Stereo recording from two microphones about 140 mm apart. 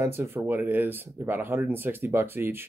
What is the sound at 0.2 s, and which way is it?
Speech, 15° right (ahead or behind).